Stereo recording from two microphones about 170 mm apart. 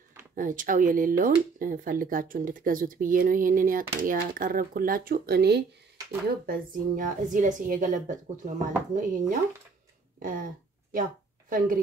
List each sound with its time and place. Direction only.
0.4 s speech: 50° right (ahead or behind)
10.2 s speech: 50° right (ahead or behind)
10.9 s a sound: 50° right (ahead or behind)